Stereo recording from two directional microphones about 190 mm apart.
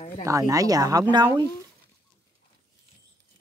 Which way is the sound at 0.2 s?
15° right (ahead or behind).